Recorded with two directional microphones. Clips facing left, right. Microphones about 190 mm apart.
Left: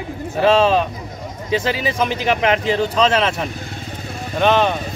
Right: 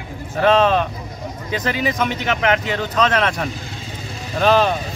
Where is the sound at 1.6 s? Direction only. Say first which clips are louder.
Even; 30° left (ahead or behind).